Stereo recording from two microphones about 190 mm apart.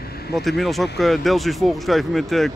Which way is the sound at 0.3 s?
Centre (ahead or behind).